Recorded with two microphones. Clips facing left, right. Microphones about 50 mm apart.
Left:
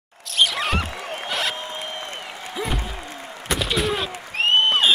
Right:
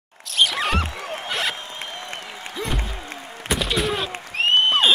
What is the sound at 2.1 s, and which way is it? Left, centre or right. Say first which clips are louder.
Applause: left 1 dB; centre.